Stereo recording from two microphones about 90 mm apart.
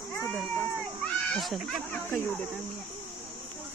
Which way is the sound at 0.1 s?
20° left (ahead or behind).